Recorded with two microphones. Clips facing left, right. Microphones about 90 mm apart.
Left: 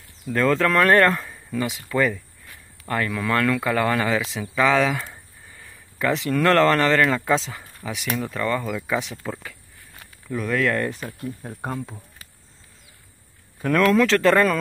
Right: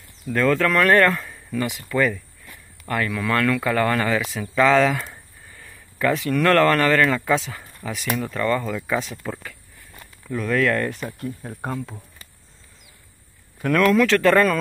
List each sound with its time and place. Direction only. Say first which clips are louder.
0.3 s speech: even; 25° left (ahead or behind)
10.3 s speech: right 2 dB; 10° left (ahead or behind)
13.6 s speech: right 1 dB; 15° left (ahead or behind)